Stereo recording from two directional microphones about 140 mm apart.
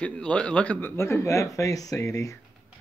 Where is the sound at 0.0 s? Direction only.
10° left (ahead or behind).